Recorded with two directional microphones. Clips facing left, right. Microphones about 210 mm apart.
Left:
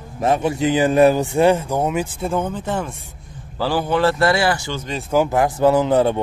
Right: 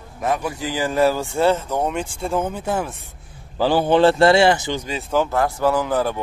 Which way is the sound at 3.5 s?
20° right (ahead or behind).